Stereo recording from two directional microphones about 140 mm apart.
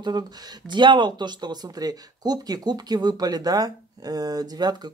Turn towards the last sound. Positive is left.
turn(degrees=-30)  # may be behind; listen again after turning